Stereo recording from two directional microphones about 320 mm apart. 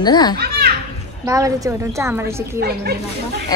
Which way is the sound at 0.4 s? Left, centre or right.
Right.